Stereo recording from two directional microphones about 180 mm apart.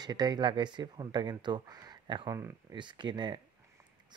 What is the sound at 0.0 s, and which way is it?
Speech, 20° right (ahead or behind).